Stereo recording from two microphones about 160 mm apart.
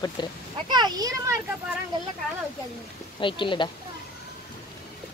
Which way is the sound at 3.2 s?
30° left (ahead or behind).